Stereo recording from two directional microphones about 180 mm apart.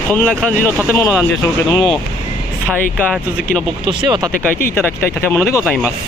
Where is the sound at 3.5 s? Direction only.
50° left (ahead or behind).